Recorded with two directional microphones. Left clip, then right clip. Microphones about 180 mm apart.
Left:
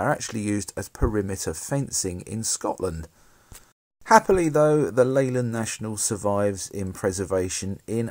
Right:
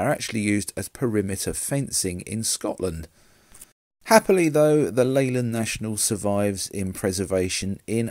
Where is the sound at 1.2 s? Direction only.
25° right (ahead or behind).